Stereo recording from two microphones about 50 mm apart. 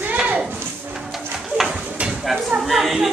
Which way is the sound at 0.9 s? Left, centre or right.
Centre.